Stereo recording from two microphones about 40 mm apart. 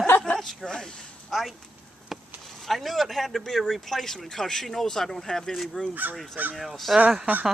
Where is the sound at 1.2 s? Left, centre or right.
Centre.